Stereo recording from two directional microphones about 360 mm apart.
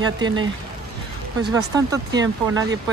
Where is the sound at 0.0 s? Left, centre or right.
Centre.